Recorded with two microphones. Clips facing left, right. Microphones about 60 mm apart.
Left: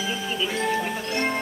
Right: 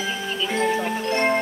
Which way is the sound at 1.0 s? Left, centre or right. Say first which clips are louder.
Right 5 dB; right.